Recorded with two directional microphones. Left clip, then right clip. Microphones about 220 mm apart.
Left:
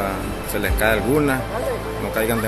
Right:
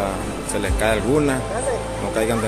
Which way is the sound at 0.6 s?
Centre (ahead or behind).